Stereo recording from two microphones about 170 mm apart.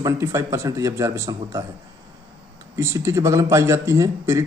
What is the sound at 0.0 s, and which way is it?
A man's voice, 15° right (ahead or behind).